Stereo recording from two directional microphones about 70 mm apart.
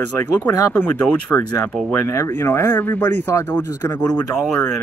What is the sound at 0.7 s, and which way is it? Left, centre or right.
Speech, left.